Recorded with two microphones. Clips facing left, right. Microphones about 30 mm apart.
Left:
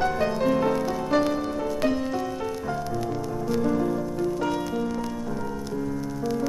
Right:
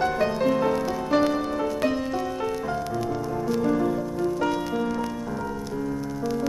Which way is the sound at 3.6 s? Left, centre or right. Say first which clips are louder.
Right 1 dB; centre.